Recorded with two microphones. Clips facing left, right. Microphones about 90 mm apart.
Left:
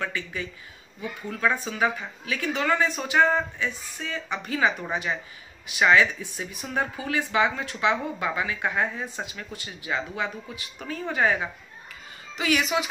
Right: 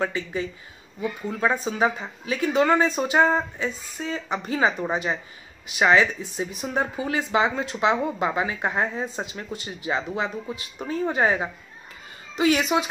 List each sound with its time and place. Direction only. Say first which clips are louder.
0.0 s a woman's voice: right 5 dB; 30° right (ahead or behind)